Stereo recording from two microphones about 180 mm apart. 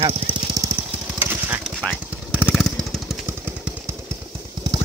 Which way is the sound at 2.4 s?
5° right (ahead or behind).